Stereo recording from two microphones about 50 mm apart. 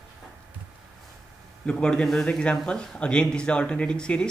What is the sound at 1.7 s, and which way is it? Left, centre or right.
Speech, centre.